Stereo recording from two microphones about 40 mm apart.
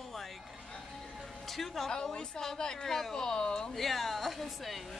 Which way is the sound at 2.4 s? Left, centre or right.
Centre.